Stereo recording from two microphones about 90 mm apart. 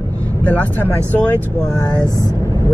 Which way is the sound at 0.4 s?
20° left (ahead or behind).